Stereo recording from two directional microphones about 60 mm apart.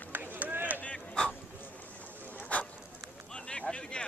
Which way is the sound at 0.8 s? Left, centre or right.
Centre.